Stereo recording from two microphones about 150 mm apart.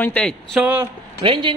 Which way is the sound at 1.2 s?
35° right (ahead or behind).